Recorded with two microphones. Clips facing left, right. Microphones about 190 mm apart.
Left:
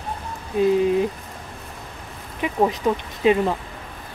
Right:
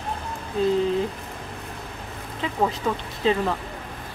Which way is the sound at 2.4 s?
15° left (ahead or behind).